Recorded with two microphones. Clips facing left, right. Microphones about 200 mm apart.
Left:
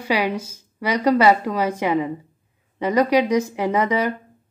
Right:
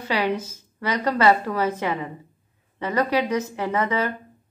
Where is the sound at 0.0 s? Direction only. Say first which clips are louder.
Left 2 dB; 10° left (ahead or behind).